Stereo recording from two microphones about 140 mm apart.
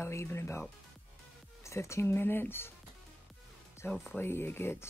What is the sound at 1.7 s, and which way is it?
Speech, 20° left (ahead or behind).